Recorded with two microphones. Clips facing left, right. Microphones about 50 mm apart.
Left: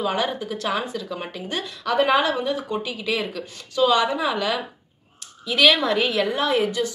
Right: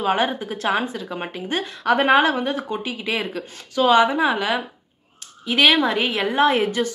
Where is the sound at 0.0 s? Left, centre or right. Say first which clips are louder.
Right 3 dB; right.